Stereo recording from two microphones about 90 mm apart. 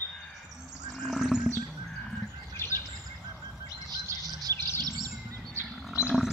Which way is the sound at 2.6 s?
25° left (ahead or behind).